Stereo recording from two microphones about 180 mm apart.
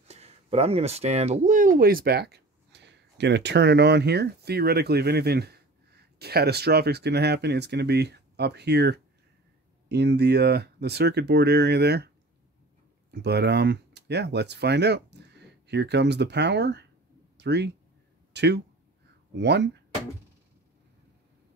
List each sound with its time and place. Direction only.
0.1 s speech: 35° right (ahead or behind); by 12.1 s 65° right (ahead or behind)
13.1 s speech: 65° right (ahead or behind)